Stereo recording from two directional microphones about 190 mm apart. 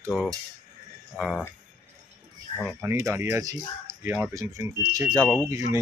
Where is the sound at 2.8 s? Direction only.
15° right (ahead or behind).